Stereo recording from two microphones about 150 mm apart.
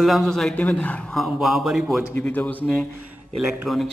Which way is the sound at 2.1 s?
10° left (ahead or behind).